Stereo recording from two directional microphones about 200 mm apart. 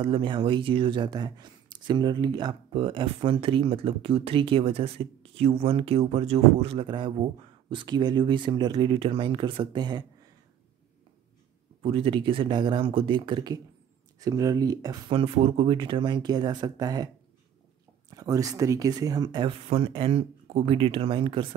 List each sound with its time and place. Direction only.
0.0 s speech: 25° right (ahead or behind)
11.8 s speech: 25° right (ahead or behind)
18.1 s speech: 15° right (ahead or behind)